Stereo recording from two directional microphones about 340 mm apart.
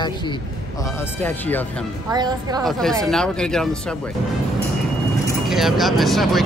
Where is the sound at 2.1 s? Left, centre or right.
Centre.